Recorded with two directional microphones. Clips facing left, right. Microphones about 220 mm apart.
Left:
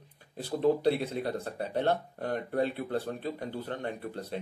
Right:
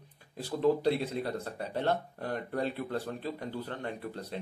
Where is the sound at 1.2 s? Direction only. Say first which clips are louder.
Left 2 dB; 30° left (ahead or behind).